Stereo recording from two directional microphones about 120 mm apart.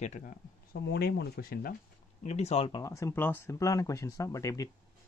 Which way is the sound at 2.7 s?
25° left (ahead or behind).